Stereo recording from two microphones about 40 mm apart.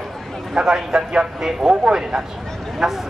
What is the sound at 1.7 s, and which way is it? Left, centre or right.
A woman's voice, right.